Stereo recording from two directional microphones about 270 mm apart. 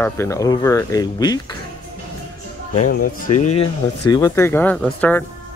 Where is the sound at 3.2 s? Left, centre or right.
Left.